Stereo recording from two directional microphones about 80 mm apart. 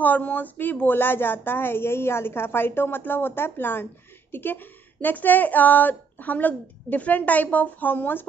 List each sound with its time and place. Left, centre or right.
0.0 s a woman's voice: left